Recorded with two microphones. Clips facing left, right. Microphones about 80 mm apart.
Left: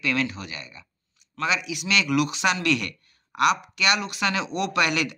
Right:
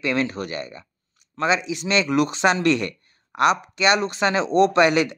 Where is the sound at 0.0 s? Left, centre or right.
Right.